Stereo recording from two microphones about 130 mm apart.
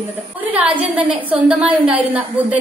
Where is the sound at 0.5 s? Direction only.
10° right (ahead or behind).